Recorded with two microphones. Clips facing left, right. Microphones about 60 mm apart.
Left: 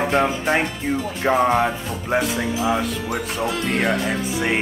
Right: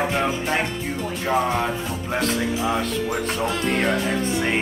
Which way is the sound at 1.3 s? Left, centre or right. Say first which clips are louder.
Left 4 dB; centre.